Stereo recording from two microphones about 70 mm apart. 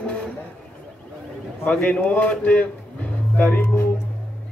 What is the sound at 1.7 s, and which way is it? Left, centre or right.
A man's voice, centre.